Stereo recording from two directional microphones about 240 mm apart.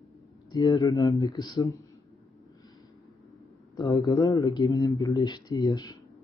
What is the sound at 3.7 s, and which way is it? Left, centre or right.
Speech, centre.